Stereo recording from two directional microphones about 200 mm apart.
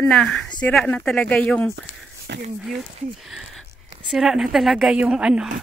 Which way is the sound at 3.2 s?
Centre (ahead or behind).